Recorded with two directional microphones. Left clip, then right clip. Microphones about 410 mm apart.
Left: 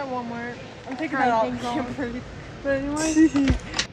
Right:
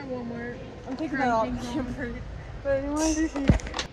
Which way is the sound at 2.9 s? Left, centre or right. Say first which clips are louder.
Left 6 dB; right.